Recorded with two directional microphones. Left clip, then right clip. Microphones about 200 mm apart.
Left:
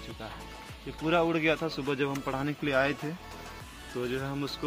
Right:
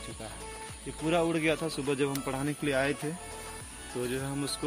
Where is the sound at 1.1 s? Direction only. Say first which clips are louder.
Left 2 dB; 20° right (ahead or behind).